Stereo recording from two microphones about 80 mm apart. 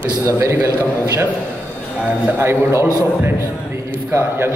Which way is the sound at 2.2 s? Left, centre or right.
Right.